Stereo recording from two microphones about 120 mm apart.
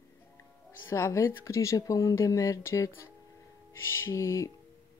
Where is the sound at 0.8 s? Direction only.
25° left (ahead or behind).